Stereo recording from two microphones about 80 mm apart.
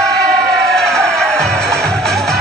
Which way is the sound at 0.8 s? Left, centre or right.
Centre.